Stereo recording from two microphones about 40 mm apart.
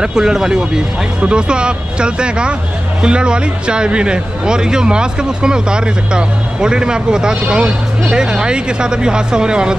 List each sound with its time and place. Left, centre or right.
0.0 s speech: centre